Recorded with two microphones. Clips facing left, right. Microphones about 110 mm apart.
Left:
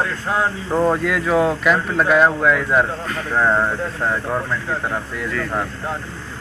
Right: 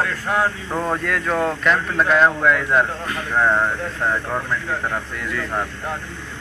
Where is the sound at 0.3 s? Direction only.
25° left (ahead or behind).